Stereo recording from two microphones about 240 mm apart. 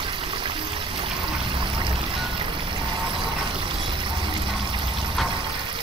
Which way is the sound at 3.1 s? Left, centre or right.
Right.